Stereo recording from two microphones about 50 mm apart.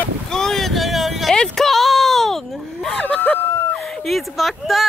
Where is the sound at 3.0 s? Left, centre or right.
Left.